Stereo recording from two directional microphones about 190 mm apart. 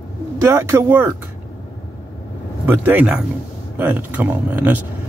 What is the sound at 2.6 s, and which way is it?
Speech, 10° right (ahead or behind).